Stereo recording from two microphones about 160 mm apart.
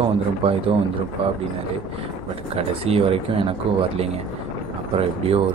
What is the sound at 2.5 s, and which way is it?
Speech, 40° right (ahead or behind).